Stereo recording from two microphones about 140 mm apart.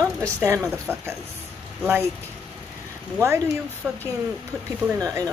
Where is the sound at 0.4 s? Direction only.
15° right (ahead or behind).